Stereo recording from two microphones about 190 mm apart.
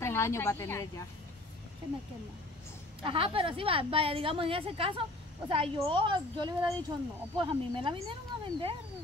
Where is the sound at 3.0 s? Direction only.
30° right (ahead or behind).